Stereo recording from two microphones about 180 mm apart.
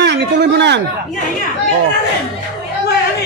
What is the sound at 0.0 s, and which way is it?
Speech, 70° right (ahead or behind).